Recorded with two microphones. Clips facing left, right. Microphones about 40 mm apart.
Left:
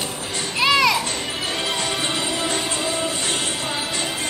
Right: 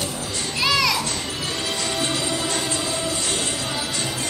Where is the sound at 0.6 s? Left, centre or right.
Left.